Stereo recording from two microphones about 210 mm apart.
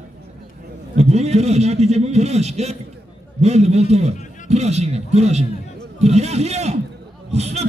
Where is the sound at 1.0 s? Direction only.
30° right (ahead or behind).